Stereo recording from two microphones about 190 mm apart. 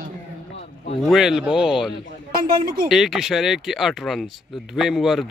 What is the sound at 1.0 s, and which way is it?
Speech, centre (ahead or behind).